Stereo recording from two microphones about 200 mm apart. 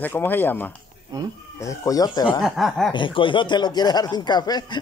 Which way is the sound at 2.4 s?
Centre (ahead or behind).